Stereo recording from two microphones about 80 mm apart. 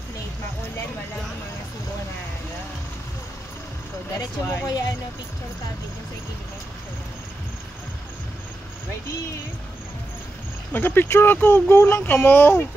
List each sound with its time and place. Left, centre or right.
4.1 s speech: left
10.7 s speech: left